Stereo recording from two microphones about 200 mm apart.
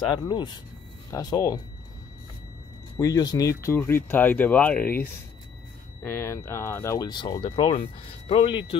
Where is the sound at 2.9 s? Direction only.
20° left (ahead or behind).